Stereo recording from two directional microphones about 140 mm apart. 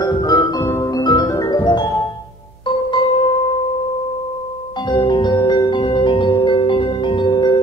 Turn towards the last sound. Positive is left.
turn(degrees=35)  # may be behind; listen again after turning